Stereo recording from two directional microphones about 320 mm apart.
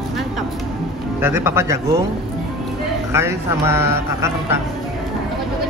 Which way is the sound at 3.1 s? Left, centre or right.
Centre.